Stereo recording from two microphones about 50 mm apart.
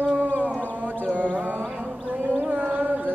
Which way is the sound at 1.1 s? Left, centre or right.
Right.